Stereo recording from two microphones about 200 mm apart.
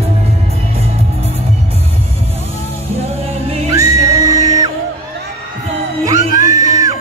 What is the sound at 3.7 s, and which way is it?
Music, 15° right (ahead or behind).